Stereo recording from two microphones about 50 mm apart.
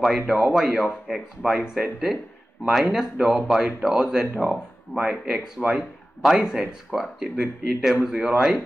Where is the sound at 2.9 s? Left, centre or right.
Centre.